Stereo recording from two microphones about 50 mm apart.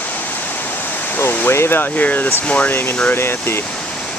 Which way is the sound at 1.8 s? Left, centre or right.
Left.